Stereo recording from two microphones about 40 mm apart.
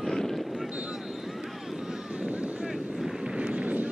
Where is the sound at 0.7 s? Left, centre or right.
Right.